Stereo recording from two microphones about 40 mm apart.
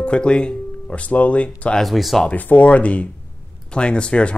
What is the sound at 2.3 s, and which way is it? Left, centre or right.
Speech, left.